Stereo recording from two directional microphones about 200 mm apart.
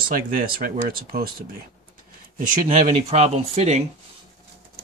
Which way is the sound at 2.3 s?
35° right (ahead or behind).